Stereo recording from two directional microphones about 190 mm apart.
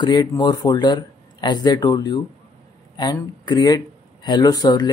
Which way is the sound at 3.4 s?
20° left (ahead or behind).